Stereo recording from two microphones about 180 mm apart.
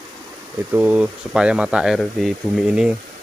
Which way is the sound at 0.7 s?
10° right (ahead or behind).